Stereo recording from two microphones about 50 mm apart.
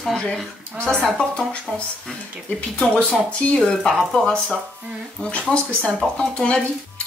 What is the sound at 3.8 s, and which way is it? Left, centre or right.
Speech, centre.